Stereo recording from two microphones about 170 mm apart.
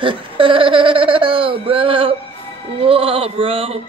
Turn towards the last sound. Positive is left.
turn(degrees=-35)  # may be behind; listen again after turning